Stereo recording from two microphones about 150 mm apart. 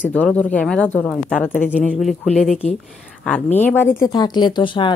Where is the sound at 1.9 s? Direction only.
Centre (ahead or behind).